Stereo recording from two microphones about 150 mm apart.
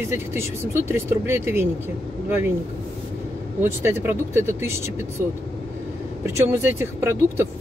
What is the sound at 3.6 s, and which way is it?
Speech, 15° right (ahead or behind).